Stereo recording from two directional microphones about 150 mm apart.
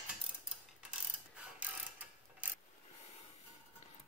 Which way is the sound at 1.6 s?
10° right (ahead or behind).